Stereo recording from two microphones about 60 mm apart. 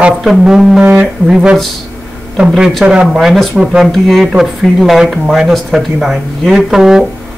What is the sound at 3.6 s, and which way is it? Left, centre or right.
Speech, centre.